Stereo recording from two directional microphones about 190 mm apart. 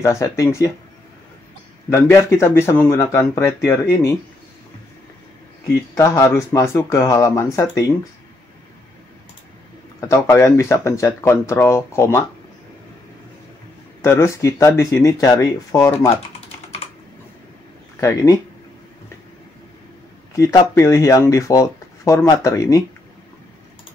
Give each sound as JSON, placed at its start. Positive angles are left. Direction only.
{"t": 0.0, "sound": "speech", "side_deg": 15}
{"t": 1.9, "sound": "speech", "side_deg": 15}
{"t": 5.9, "sound": "speech", "side_deg": 15}
{"t": 9.9, "sound": "speech", "side_deg": 15}
{"t": 14.0, "sound": "speech", "side_deg": 15}
{"t": 18.0, "sound": "speech", "side_deg": 20}
{"t": 20.3, "sound": "speech", "side_deg": 15}